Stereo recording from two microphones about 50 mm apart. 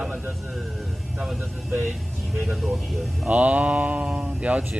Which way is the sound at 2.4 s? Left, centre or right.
Centre.